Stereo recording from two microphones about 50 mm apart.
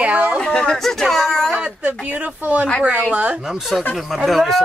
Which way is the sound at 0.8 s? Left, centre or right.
Centre.